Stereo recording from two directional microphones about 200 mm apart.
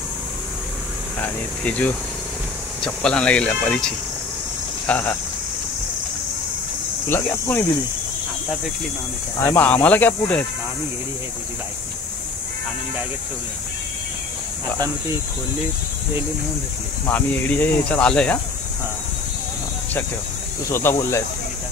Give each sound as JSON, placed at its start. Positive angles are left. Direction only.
{"t": 1.2, "sound": "speech", "side_deg": 5}
{"t": 7.1, "sound": "speech", "side_deg": 10}
{"t": 9.4, "sound": "speech", "side_deg": 10}
{"t": 17.1, "sound": "speech", "side_deg": 10}
{"t": 20.7, "sound": "speech", "side_deg": 15}